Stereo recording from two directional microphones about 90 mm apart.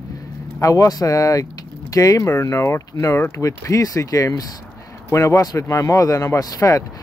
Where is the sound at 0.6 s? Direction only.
40° left (ahead or behind).